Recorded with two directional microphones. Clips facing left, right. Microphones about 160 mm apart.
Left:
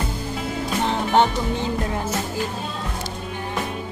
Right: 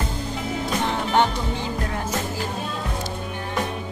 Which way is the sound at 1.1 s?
15° left (ahead or behind).